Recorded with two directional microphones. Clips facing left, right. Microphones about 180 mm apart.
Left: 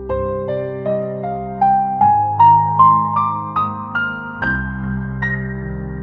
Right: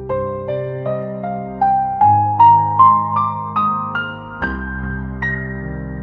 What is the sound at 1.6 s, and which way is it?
Music, centre (ahead or behind).